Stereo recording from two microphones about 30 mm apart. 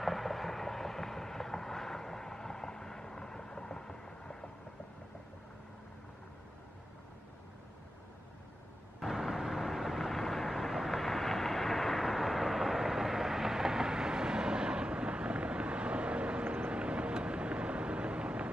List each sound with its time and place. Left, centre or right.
0.0 s vehicle: centre; by 4.5 s left
9.0 s vehicle: centre; by 18.5 s right